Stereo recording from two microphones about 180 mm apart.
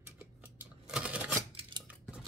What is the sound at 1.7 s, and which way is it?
Scissors, 25° right (ahead or behind).